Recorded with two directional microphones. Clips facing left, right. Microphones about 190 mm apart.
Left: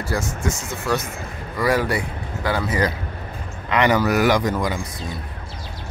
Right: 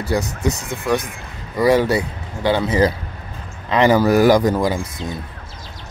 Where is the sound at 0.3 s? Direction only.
65° right (ahead or behind).